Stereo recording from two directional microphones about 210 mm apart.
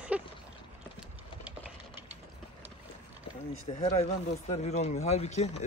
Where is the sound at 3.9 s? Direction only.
30° left (ahead or behind).